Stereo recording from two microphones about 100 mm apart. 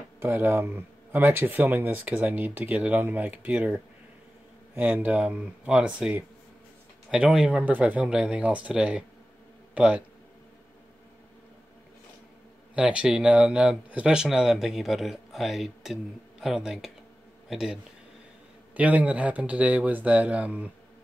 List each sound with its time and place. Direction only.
0.2 s speech: 25° right (ahead or behind)
12.7 s a man's voice: 10° right (ahead or behind)
18.8 s speech: 15° right (ahead or behind)